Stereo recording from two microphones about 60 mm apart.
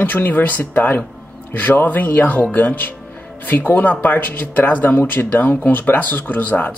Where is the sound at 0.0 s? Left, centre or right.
Left.